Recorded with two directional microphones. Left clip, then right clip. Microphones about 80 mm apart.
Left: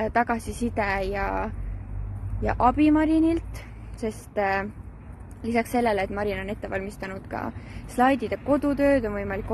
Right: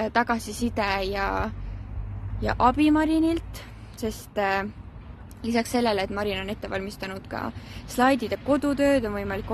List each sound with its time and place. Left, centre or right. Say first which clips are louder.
0.0 s a woman's voice: even; right
8.0 s a woman's voice: even; right
8.5 s speech: left 1 dB; right